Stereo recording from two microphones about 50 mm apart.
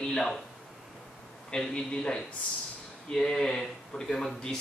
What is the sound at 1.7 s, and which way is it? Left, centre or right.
A man's voice, left.